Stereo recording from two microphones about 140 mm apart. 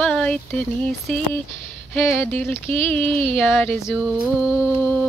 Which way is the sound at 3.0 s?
40° right (ahead or behind).